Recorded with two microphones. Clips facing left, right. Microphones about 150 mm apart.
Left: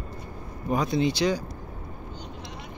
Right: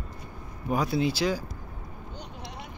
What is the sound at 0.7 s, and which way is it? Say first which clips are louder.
Speech: left 2 dB; 5° right (ahead or behind).